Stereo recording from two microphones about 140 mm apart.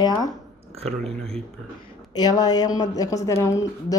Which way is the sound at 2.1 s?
30° left (ahead or behind).